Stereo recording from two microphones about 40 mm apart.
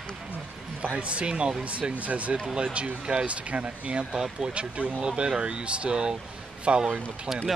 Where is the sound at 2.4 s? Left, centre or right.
Right.